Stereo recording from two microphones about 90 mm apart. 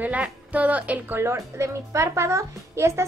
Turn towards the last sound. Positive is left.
turn(degrees=-30)  # may be behind; listen again after turning